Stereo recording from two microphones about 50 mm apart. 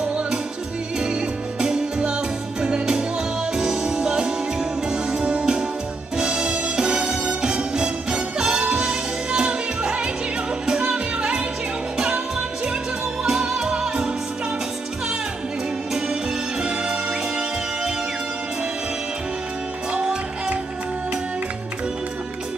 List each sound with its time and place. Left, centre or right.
0.9 s music: centre
16.6 s music: centre
19.9 s music: right